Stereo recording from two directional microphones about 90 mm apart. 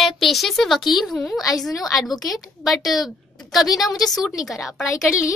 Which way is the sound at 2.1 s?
45° left (ahead or behind).